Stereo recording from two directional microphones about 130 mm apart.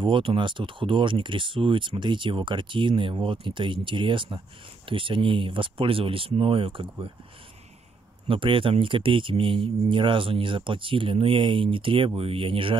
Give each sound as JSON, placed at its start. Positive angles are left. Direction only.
{"t": 0.0, "sound": "speech", "side_deg": -40}
{"t": 8.3, "sound": "speech", "side_deg": -40}